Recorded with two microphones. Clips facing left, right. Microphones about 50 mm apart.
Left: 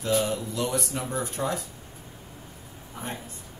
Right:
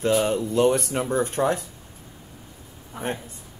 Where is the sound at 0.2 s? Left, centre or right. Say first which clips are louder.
Right 8 dB; right.